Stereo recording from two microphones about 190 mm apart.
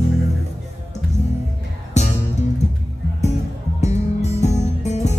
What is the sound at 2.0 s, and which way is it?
Music, 35° left (ahead or behind).